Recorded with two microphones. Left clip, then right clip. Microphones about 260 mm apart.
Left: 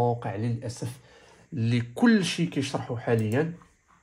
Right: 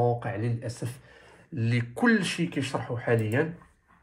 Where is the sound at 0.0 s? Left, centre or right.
Left.